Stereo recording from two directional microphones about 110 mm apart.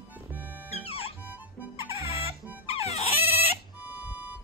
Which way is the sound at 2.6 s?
70° left (ahead or behind).